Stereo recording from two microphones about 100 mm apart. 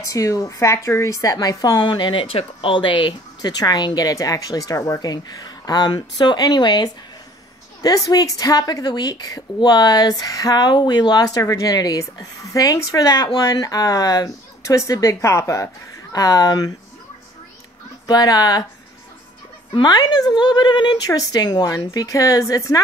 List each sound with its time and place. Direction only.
0.0 s a woman's voice: 35° left (ahead or behind)
5.0 s a woman's voice: 45° left (ahead or behind)
18.0 s a woman's voice: 40° left (ahead or behind)
19.7 s a woman's voice: 45° left (ahead or behind)